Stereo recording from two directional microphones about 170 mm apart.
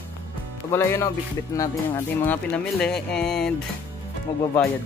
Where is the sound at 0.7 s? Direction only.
15° left (ahead or behind).